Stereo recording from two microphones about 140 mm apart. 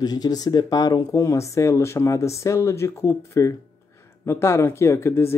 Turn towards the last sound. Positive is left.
turn(degrees=20)  # may be behind; listen again after turning